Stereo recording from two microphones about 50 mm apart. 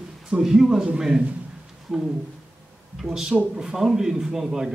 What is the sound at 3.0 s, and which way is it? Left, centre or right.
Speech, centre.